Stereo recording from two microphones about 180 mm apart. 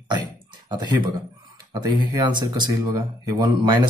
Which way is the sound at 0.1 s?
25° right (ahead or behind).